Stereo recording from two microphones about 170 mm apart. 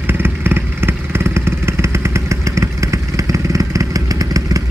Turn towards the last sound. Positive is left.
turn(degrees=-20)  # may be behind; listen again after turning